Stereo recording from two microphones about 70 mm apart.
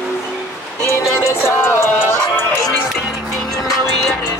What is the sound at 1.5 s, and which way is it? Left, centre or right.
Music, left.